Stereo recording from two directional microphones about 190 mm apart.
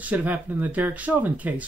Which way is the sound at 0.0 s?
10° right (ahead or behind).